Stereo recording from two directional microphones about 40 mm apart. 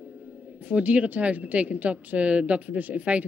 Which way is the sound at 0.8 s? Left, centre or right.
Right.